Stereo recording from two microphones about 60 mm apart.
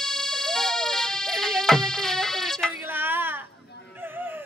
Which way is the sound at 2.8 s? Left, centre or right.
Right.